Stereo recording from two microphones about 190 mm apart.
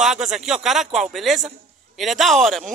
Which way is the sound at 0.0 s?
5° right (ahead or behind).